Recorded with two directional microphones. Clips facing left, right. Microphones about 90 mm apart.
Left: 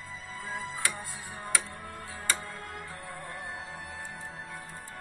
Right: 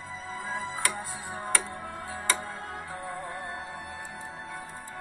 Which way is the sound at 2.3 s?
20° right (ahead or behind).